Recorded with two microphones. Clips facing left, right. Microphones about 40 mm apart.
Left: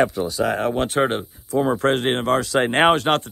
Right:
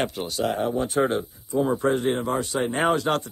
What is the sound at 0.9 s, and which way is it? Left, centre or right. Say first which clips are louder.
Speech: left 2 dB; left.